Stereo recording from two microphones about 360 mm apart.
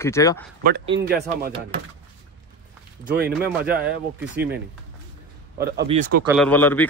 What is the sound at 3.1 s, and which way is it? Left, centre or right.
Speech, right.